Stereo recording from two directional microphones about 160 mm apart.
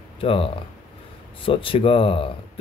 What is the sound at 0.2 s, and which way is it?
Speech, 35° left (ahead or behind).